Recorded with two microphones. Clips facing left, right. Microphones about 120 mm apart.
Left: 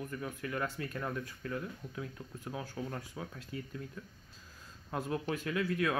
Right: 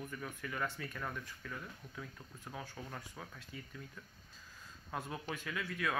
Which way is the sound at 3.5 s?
55° left (ahead or behind).